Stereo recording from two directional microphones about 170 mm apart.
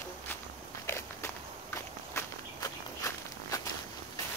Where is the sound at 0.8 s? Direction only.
15° left (ahead or behind).